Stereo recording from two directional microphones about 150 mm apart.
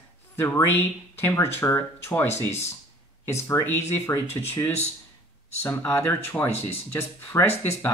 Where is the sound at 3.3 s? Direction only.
20° left (ahead or behind).